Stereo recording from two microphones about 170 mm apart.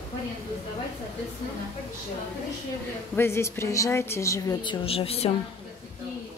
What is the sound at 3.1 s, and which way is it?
A woman's voice, 15° left (ahead or behind).